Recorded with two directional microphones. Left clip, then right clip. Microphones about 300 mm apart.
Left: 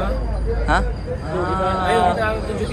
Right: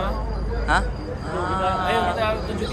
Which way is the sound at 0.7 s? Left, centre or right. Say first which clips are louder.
Left 1 dB; centre.